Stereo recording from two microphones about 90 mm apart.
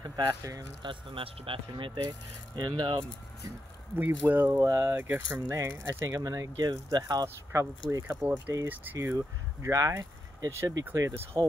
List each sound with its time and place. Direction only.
0.3 s speech: 35° right (ahead or behind)
0.8 s speech: 90° right
2.0 s speech: 50° right (ahead or behind)
3.9 s speech: 20° right (ahead or behind)
4.6 s speech: 40° right (ahead or behind)
4.9 s speech: 20° right (ahead or behind)
5.5 s speech: 40° right (ahead or behind)
7.5 s speech: 35° right (ahead or behind)
8.2 s speech: 20° right (ahead or behind)
8.9 s speech: 35° right (ahead or behind)